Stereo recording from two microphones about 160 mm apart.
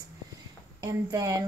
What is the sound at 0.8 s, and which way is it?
Speech, 20° right (ahead or behind).